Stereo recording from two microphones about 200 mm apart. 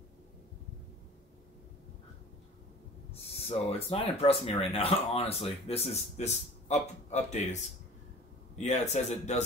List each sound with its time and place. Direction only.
3.1 s speech: 30° left (ahead or behind)
8.6 s speech: 35° left (ahead or behind)